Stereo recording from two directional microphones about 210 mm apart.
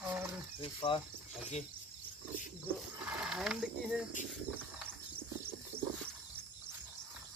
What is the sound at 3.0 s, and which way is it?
Speech, 5° right (ahead or behind).